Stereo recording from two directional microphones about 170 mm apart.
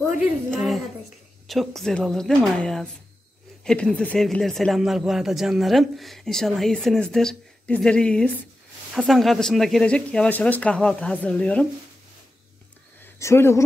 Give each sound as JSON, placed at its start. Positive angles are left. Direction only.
{"t": 0.5, "sound": "speech", "side_deg": 0}
{"t": 13.0, "sound": "speech", "side_deg": 15}